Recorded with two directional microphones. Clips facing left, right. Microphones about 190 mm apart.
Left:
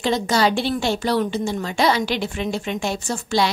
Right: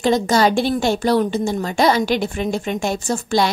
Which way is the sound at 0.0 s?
45° right (ahead or behind).